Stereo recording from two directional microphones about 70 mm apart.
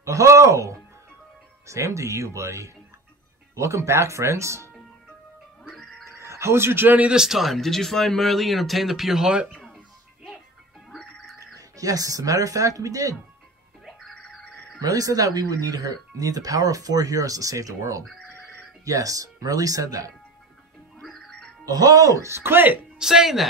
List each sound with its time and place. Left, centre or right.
0.0 s speech: right
5.6 s music: centre
6.0 s a sound: right
7.0 s speech: centre
10.9 s music: centre
11.3 s speech: right
13.8 s music: centre
14.1 s a sound: centre
14.8 s speech: right
21.0 s music: centre
21.6 s speech: right
22.9 s speech: centre